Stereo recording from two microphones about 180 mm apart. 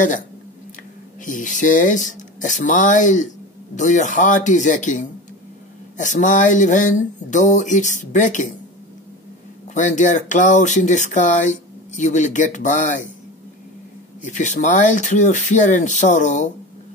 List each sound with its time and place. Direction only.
1.2 s speech: 45° left (ahead or behind)
9.8 s speech: 45° left (ahead or behind)
14.2 s speech: 40° left (ahead or behind)